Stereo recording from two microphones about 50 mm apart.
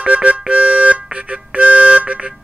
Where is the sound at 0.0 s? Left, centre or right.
Right.